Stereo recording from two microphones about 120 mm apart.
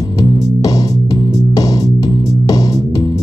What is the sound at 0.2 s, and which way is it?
Music, 30° left (ahead or behind).